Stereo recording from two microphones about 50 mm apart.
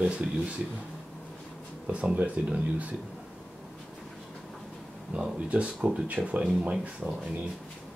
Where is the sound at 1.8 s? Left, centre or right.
Right.